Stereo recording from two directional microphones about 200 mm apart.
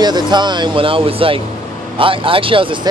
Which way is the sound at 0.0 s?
20° right (ahead or behind).